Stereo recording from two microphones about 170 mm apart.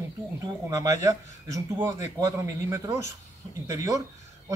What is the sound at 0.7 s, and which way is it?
Speech, 20° right (ahead or behind).